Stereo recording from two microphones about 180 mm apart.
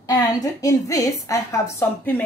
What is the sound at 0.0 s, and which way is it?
A woman's voice, 20° left (ahead or behind).